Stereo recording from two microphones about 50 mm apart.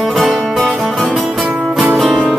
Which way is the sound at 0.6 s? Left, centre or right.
Centre.